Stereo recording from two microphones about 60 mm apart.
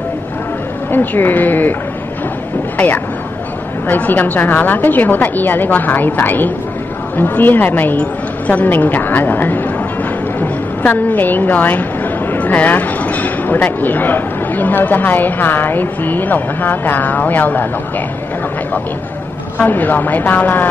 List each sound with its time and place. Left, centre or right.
0.9 s a woman's voice: left
3.8 s a woman's voice: left
19.6 s a woman's voice: left